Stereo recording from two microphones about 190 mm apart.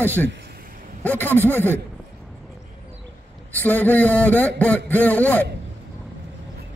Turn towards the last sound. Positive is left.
turn(degrees=10)  # may be behind; listen again after turning